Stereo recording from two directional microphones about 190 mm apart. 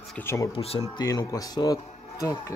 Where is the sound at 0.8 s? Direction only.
20° left (ahead or behind).